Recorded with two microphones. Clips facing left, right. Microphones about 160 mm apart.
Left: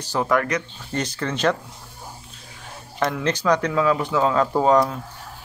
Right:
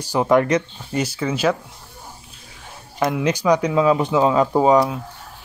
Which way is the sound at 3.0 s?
10° right (ahead or behind).